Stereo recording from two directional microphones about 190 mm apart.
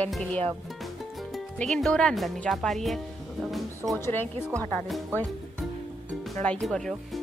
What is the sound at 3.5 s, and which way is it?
Music, centre (ahead or behind).